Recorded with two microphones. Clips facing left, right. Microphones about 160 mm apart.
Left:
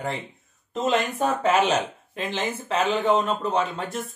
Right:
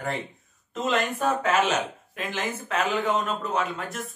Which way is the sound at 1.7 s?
25° left (ahead or behind).